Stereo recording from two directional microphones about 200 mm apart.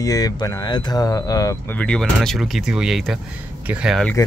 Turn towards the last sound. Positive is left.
turn(degrees=0)  # may be behind; listen again after turning